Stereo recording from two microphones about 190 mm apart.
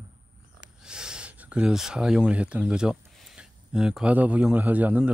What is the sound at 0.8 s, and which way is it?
Speech, 5° right (ahead or behind).